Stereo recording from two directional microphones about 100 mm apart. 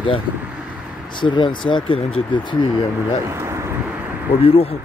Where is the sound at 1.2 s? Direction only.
55° left (ahead or behind).